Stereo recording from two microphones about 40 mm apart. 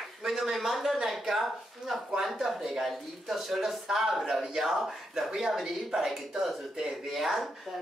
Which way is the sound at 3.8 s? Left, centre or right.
Centre.